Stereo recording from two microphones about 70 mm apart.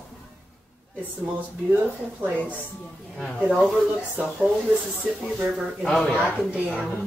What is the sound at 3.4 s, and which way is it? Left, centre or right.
Speech, centre.